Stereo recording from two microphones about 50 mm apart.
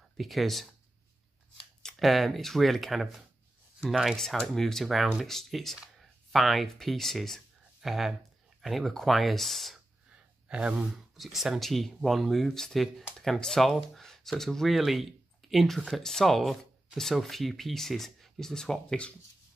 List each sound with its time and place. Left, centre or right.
0.2 s speech: centre
1.8 s speech: centre
4.2 s speech: centre
10.5 s speech: right
11.1 s speech: centre